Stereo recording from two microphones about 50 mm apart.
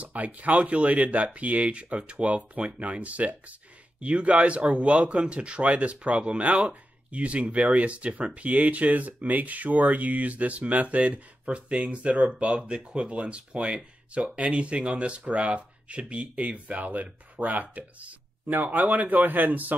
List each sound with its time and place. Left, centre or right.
0.0 s speech: right